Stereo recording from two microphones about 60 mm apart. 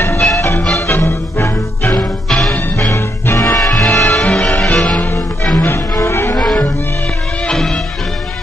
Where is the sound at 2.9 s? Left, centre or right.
Left.